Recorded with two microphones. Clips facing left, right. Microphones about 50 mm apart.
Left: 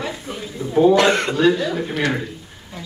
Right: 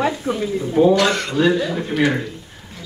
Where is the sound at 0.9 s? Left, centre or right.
Left.